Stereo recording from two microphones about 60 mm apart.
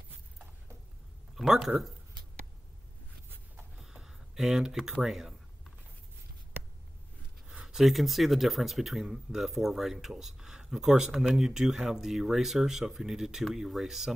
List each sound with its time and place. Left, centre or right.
1.3 s speech: centre
3.8 s speech: centre
7.6 s speech: centre